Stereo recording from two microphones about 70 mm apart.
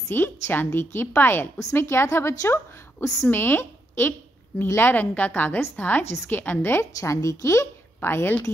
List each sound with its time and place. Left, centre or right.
0.1 s a woman's voice: left
3.3 s a woman's voice: left
7.0 s a woman's voice: left